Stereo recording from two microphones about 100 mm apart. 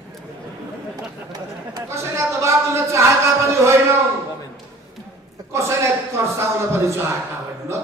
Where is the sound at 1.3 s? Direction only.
30° right (ahead or behind).